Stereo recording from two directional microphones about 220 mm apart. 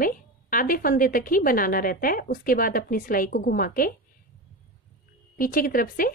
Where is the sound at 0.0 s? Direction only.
40° left (ahead or behind).